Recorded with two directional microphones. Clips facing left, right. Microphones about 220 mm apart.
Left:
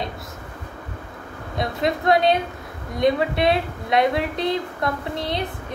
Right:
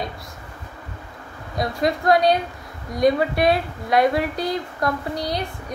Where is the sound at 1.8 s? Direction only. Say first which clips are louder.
Right 1 dB; 25° left (ahead or behind).